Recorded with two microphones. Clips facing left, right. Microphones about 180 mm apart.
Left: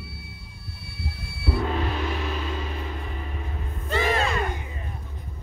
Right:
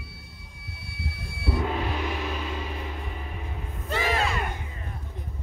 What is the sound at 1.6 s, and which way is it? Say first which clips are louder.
Gong: left 2 dB; 10° right (ahead or behind).